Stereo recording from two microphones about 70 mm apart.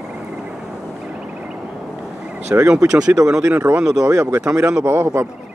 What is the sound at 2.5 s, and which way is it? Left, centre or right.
Speech, right.